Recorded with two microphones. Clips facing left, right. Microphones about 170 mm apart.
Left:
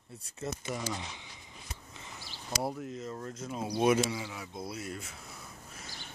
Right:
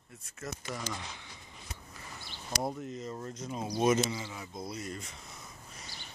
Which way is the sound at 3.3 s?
5° left (ahead or behind).